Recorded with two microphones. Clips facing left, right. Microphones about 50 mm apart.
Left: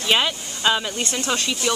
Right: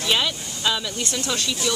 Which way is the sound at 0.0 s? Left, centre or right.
Left.